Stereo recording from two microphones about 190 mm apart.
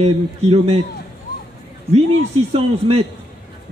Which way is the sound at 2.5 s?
30° right (ahead or behind).